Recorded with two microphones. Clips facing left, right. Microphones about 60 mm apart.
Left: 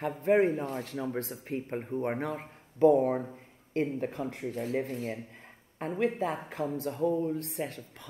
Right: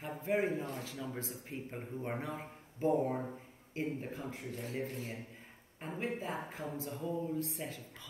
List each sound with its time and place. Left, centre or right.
0.2 s speech: left